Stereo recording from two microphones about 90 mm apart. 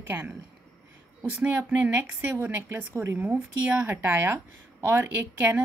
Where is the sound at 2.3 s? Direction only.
30° right (ahead or behind).